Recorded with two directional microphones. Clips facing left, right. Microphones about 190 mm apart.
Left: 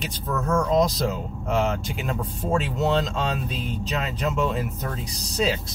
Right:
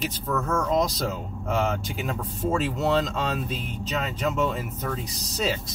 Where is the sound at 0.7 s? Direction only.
Centre (ahead or behind).